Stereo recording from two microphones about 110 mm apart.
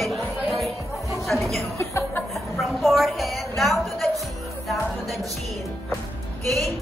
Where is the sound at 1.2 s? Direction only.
Centre (ahead or behind).